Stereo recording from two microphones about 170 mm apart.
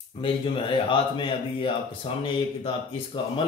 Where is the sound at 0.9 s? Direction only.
30° left (ahead or behind).